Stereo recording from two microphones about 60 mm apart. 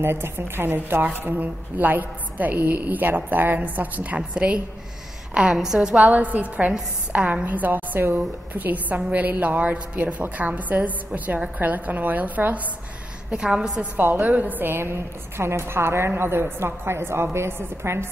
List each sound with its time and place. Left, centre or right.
0.0 s a woman's voice: right; by 5.9 s centre
5.9 s a woman's voice: right
13.3 s a woman's voice: centre
14.2 s a woman's voice: right